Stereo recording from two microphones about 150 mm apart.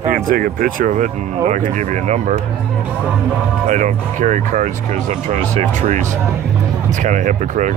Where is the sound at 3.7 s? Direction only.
55° right (ahead or behind).